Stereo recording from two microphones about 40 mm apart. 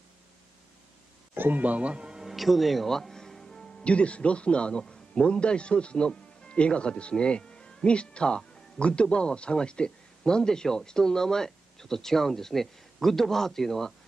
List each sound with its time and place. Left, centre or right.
1.3 s a sound: right
1.6 s speech: right
2.1 s music: centre
3.8 s speech: left; by 13.9 s centre